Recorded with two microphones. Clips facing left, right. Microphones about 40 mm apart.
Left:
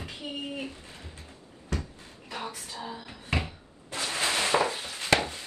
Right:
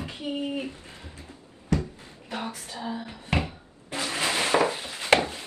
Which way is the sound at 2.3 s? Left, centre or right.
Right.